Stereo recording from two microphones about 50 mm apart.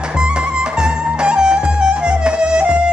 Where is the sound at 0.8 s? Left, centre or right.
Centre.